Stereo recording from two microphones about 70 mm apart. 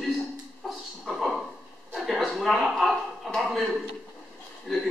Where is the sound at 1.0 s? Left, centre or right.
Centre.